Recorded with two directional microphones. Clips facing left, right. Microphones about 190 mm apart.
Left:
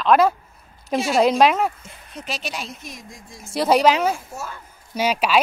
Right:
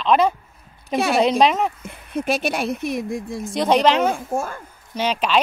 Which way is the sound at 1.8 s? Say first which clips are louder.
Right 11 dB; 55° right (ahead or behind).